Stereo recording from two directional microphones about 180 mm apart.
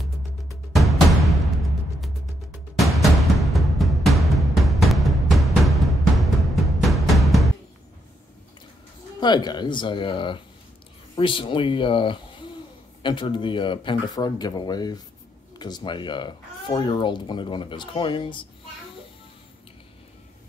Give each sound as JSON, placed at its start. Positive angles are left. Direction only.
{"t": 0.5, "sound": "music", "side_deg": 0}
{"t": 2.8, "sound": "music", "side_deg": 0}
{"t": 9.2, "sound": "speech", "side_deg": 25}